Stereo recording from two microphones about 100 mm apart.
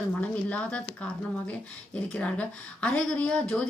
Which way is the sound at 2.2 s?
10° left (ahead or behind).